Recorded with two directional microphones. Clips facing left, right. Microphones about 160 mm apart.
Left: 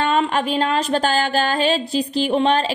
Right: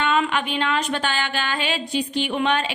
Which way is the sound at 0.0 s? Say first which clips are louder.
Left 3 dB; 35° left (ahead or behind).